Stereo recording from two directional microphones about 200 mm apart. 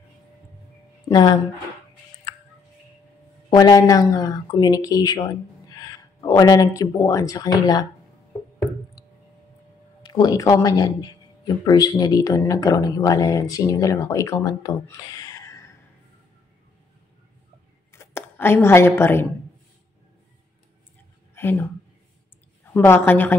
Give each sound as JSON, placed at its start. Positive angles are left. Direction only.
{"t": 1.0, "sound": "speech", "side_deg": 20}
{"t": 3.4, "sound": "speech", "side_deg": 20}
{"t": 10.0, "sound": "a man's voice", "side_deg": 20}
{"t": 17.9, "sound": "speech", "side_deg": 10}
{"t": 21.4, "sound": "speech", "side_deg": 10}
{"t": 22.7, "sound": "a man's voice", "side_deg": 10}